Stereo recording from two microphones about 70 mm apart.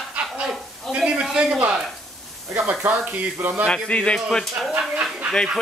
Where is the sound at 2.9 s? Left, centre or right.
Right.